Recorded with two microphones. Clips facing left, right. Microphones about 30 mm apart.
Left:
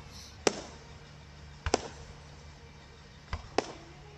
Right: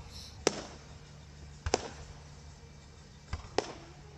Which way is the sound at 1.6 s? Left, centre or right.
Left.